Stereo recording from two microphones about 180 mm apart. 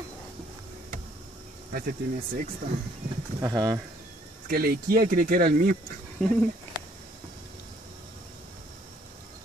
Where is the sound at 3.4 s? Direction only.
20° right (ahead or behind).